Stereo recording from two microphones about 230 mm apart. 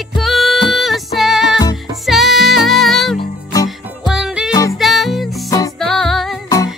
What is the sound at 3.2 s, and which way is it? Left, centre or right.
Music, centre.